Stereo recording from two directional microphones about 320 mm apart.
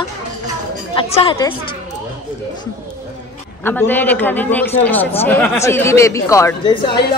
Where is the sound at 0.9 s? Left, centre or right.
Centre.